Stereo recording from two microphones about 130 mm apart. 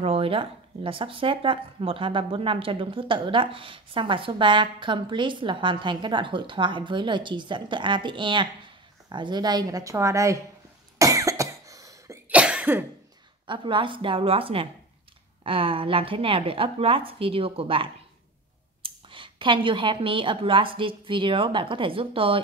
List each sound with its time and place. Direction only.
0.0 s a woman's voice: 45° right (ahead or behind); by 10.4 s 25° right (ahead or behind)
11.0 s cough: 25° right (ahead or behind)
12.3 s cough: 10° right (ahead or behind)
13.5 s speech: 40° right (ahead or behind)